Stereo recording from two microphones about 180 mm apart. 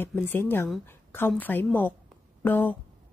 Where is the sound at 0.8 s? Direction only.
10° left (ahead or behind).